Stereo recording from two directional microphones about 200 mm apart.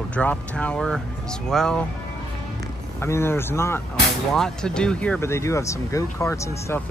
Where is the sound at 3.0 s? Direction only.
10° left (ahead or behind).